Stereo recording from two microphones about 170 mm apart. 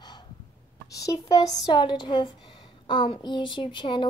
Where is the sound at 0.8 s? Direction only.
20° left (ahead or behind).